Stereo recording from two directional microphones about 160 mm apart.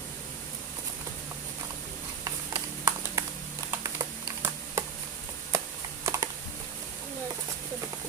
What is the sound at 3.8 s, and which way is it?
Computer keyboard, 20° right (ahead or behind).